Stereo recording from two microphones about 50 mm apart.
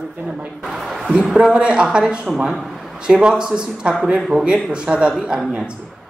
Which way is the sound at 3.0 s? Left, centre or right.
Centre.